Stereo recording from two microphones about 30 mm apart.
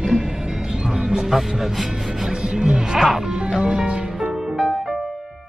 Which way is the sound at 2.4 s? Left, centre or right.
Right.